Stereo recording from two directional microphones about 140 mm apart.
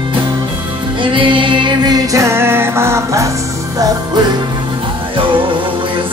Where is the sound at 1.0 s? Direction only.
35° right (ahead or behind); by 3.2 s 20° right (ahead or behind).